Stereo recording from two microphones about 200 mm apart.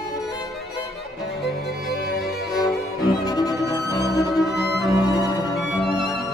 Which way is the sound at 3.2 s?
20° left (ahead or behind).